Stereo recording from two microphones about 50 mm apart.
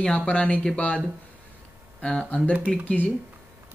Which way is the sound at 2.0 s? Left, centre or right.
Left.